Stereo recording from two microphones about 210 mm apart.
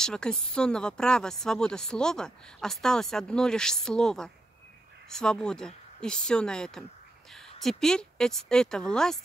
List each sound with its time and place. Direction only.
0.0 s speech: 5° left (ahead or behind)